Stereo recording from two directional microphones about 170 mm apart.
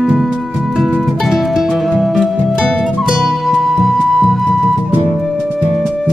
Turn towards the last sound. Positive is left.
turn(degrees=0)  # may be behind; listen again after turning